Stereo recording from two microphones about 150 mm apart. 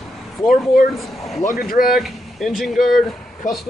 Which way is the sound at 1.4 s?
75° left (ahead or behind).